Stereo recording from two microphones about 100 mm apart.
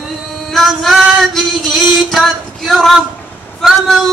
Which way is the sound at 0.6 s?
Centre (ahead or behind).